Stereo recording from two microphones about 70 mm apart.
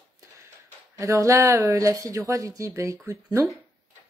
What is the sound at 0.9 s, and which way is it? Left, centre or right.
Speech, right.